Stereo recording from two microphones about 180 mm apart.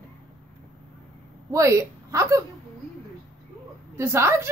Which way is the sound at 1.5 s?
15° right (ahead or behind).